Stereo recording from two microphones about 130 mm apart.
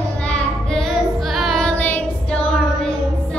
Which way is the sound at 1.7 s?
15° left (ahead or behind).